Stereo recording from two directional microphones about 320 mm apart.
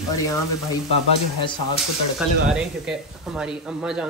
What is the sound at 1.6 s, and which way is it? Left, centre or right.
Speech, left.